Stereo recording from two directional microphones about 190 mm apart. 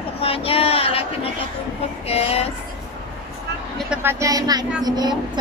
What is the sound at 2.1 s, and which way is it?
Speech, 30° left (ahead or behind).